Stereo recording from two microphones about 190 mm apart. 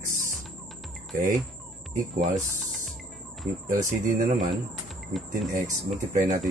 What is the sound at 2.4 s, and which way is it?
Music, centre (ahead or behind).